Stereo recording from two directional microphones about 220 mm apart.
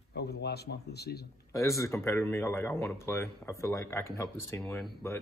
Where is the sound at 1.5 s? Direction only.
15° left (ahead or behind).